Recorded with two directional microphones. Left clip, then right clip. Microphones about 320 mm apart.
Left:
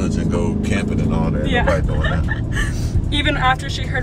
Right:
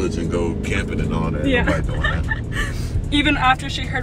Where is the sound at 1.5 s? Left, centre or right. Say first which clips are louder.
Left 1 dB; centre.